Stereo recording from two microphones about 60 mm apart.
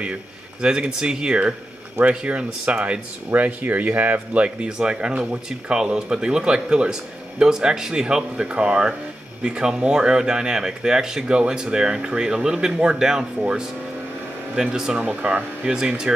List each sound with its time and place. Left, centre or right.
0.0 s speech: centre
15.0 s speech: right
15.6 s speech: centre